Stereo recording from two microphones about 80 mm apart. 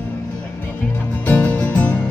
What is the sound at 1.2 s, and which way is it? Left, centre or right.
Music, left.